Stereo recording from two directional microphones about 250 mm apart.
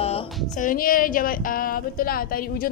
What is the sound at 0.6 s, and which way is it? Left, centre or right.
A woman's voice, left.